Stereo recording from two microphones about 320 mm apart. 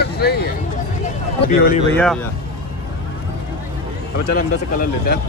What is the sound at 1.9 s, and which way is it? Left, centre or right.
Speech, centre.